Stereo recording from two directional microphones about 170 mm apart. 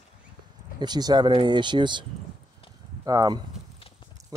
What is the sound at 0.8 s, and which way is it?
Speech, 25° right (ahead or behind).